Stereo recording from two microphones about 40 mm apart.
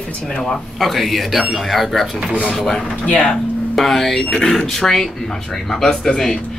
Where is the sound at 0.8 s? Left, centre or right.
Centre.